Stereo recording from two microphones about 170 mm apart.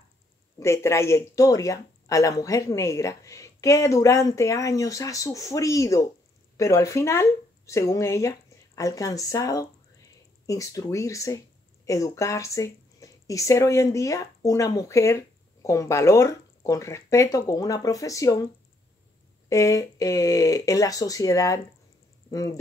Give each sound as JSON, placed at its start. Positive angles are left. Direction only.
{"t": 0.6, "sound": "speech", "side_deg": 15}
{"t": 19.5, "sound": "speech", "side_deg": 20}